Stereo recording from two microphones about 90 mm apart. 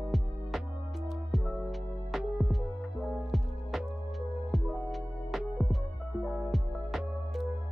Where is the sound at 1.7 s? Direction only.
Centre (ahead or behind).